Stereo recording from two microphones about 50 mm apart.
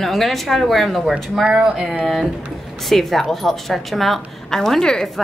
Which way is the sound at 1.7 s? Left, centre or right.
Centre.